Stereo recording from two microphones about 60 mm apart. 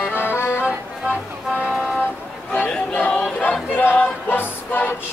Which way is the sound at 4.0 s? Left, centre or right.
Left.